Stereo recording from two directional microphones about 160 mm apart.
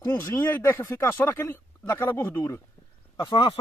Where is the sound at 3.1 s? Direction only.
30° left (ahead or behind).